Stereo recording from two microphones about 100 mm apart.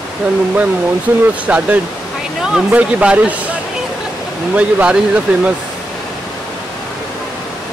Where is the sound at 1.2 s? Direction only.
15° right (ahead or behind).